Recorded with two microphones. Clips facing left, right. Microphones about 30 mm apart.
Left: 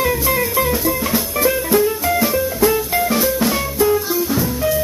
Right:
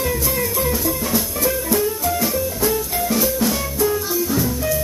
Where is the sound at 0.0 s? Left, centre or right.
Left.